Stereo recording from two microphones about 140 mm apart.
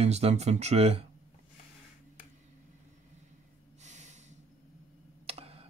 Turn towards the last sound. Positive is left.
turn(degrees=-45)  # may be behind; listen again after turning